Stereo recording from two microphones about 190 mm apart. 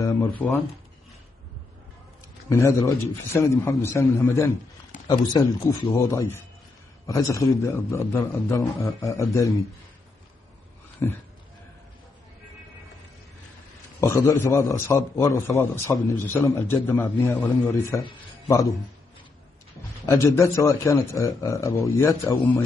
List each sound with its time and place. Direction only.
0.0 s speech: 20° left (ahead or behind)
2.5 s a man's voice: 15° left (ahead or behind)
11.0 s a man's voice: 15° left (ahead or behind)
14.0 s a man's voice: 15° left (ahead or behind)
20.1 s a man's voice: 15° left (ahead or behind)